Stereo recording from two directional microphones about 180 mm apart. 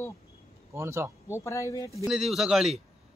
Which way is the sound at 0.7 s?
15° right (ahead or behind).